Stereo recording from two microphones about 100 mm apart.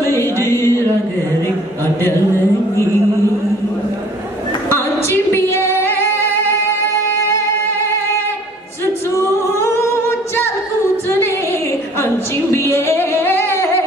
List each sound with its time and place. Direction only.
0.1 s music: 25° left (ahead or behind)
4.7 s female singing: 20° left (ahead or behind)
12.7 s music: 25° left (ahead or behind)